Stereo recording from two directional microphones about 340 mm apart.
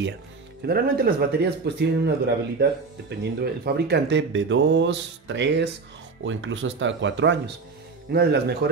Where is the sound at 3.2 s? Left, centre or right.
Right.